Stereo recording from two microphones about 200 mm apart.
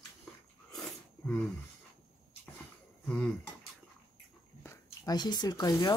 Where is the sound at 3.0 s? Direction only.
5° left (ahead or behind).